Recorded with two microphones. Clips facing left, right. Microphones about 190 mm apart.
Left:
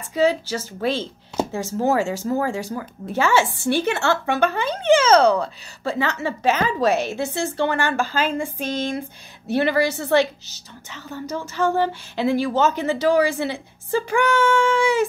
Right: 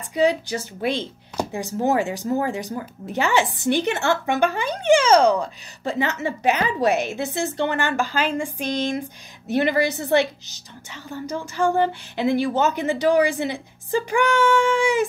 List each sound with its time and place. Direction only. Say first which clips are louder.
0.1 s a woman's voice: even; 15° right (ahead or behind)